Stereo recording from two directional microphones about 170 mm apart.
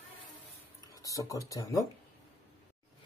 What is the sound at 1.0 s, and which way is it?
Speech, 20° left (ahead or behind).